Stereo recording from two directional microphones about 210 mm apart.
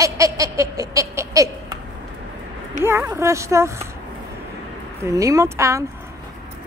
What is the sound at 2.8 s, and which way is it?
Speech, 10° right (ahead or behind).